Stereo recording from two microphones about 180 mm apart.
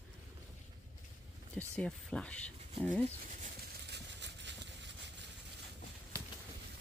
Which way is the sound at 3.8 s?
70° right (ahead or behind).